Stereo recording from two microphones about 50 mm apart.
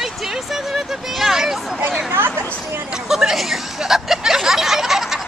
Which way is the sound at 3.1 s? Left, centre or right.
Centre.